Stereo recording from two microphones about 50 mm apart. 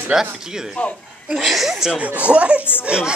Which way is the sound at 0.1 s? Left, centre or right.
Centre.